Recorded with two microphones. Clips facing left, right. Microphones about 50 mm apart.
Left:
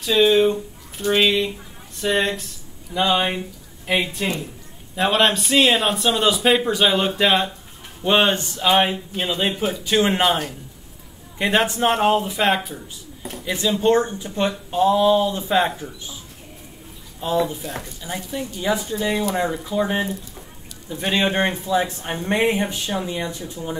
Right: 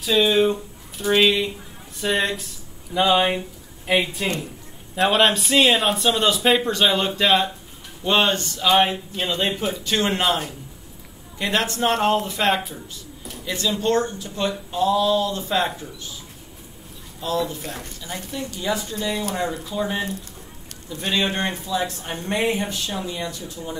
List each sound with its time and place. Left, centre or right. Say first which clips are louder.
0.0 s a man's voice: left 2 dB; centre
13.2 s speech: left 3 dB; left
17.2 s speech: left 3 dB; left
17.6 s speech: left 2 dB; left